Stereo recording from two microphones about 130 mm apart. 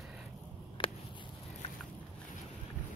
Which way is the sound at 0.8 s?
40° left (ahead or behind).